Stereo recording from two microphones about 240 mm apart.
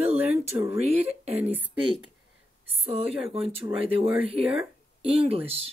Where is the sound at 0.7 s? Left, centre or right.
Right.